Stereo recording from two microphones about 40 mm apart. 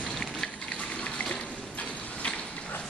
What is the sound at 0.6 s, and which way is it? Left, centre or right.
Gush, left.